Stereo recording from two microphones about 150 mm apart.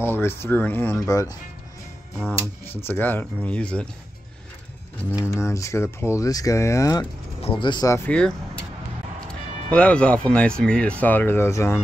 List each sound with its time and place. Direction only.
0.0 s speech: 15° left (ahead or behind)
2.1 s speech: 15° right (ahead or behind)
2.4 s speech: 15° left (ahead or behind)
5.2 s speech: 20° left (ahead or behind)
7.4 s speech: 35° left (ahead or behind)
8.1 s speech: 5° left (ahead or behind)
9.7 s speech: 10° left (ahead or behind)